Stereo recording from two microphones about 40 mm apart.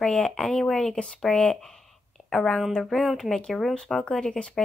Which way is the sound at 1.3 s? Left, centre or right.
Left.